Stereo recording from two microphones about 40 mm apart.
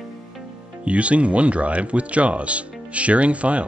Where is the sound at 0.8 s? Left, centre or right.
Right.